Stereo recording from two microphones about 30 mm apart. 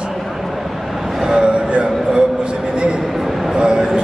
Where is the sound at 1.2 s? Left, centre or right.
Right.